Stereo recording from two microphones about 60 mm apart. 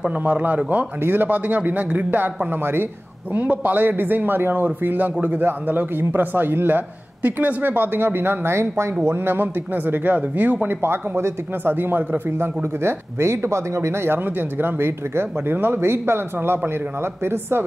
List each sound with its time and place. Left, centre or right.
0.2 s a man's voice: right
1.0 s speech: right
3.3 s speech: right
10.8 s speech: right
11.7 s speech: right